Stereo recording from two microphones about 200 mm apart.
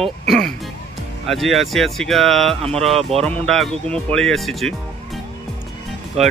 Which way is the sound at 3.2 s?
Centre (ahead or behind).